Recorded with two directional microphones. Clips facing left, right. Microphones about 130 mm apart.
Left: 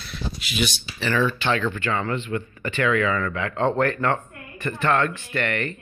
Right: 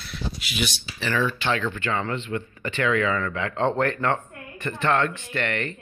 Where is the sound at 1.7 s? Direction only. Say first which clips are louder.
Left 2 dB; 20° right (ahead or behind).